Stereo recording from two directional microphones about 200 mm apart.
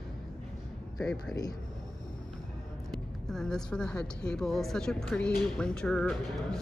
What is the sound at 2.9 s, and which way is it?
Speech, centre (ahead or behind).